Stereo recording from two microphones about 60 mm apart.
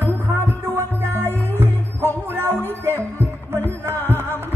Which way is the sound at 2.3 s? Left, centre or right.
Right.